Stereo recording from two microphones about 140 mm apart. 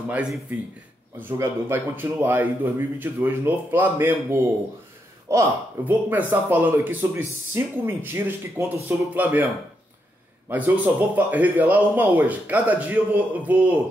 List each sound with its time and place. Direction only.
0.1 s speech: 5° right (ahead or behind)
1.4 s speech: 15° right (ahead or behind)
10.5 s speech: 10° right (ahead or behind)